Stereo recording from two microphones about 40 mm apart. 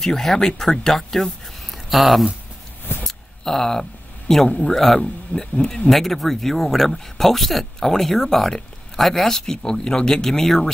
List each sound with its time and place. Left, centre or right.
0.0 s speech: centre
3.0 s a sound: centre
4.5 s speech: left
4.7 s speech: centre
5.9 s speech: centre